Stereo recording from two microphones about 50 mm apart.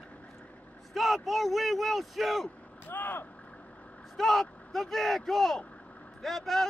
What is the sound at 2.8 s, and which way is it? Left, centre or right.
Speech, left.